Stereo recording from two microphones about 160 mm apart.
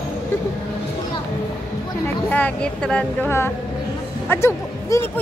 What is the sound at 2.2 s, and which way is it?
Speech, 10° left (ahead or behind).